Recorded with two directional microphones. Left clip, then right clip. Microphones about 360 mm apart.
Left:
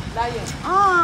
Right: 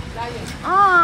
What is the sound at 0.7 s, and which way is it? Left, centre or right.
Speech, centre.